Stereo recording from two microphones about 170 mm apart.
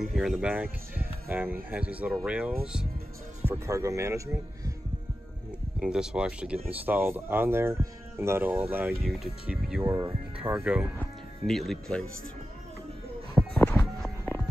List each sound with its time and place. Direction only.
0.0 s speech: centre (ahead or behind)
3.4 s speech: 15° right (ahead or behind)
5.8 s speech: 5° right (ahead or behind)
13.6 s music: 15° left (ahead or behind)